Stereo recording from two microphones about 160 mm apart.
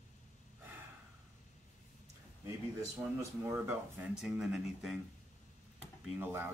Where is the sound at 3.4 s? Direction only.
15° right (ahead or behind).